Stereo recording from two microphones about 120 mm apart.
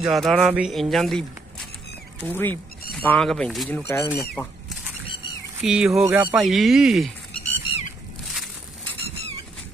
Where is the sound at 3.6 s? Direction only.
20° left (ahead or behind).